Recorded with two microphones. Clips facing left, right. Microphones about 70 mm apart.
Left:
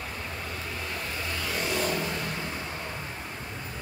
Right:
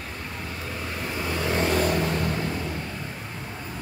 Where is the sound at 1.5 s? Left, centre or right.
Right.